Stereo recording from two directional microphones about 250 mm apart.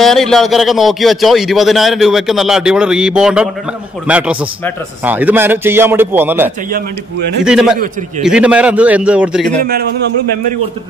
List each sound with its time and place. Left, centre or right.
0.0 s a man's voice: centre
9.6 s a man's voice: right